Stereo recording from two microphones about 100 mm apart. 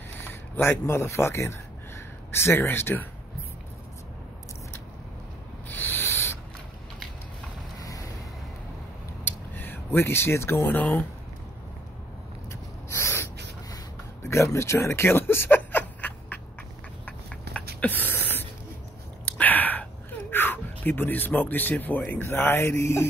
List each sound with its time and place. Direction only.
0.3 s speech: 25° left (ahead or behind)
5.8 s owl: 25° left (ahead or behind)
7.8 s vehicle: 35° left (ahead or behind)
9.2 s speech: 20° left (ahead or behind)
12.4 s a sound: 25° left (ahead or behind)
14.2 s speech: 30° left (ahead or behind)
17.0 s a sound: 10° left (ahead or behind); by 23.0 s 25° left (ahead or behind)